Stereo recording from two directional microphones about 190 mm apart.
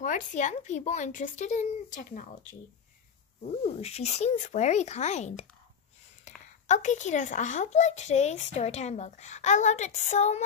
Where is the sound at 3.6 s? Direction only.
35° left (ahead or behind).